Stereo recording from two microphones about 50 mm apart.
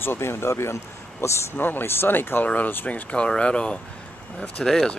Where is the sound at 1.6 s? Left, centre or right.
Left.